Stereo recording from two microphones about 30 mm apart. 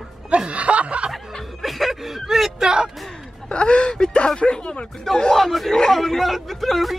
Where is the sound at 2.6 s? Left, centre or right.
Right.